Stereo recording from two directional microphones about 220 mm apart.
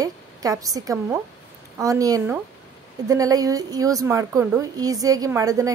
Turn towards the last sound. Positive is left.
turn(degrees=-15)  # may be behind; listen again after turning